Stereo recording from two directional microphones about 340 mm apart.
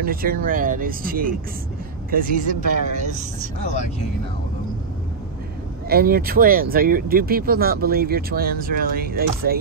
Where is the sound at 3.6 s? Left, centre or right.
Centre.